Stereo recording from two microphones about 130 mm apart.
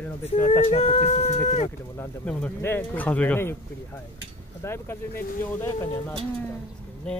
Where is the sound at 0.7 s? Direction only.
50° left (ahead or behind).